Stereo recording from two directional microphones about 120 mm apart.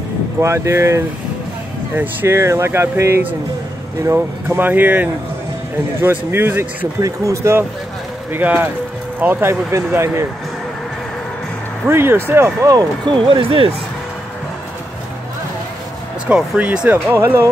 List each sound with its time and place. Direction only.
0.4 s speech: 25° right (ahead or behind)
7.0 s speech: 30° right (ahead or behind)
11.9 s speech: 20° right (ahead or behind); by 13.7 s 50° right (ahead or behind)
16.3 s speech: 10° right (ahead or behind)